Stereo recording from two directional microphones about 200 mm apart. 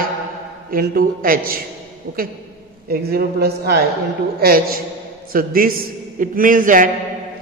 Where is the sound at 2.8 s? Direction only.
50° right (ahead or behind).